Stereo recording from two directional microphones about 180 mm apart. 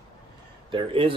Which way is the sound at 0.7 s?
30° right (ahead or behind).